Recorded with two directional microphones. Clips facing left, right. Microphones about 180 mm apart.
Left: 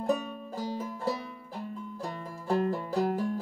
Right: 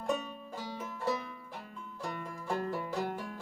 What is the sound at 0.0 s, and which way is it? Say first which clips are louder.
Music: left 5 dB; 35° left (ahead or behind).